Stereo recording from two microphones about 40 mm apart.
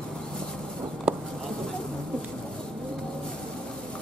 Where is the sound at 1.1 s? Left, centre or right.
Right.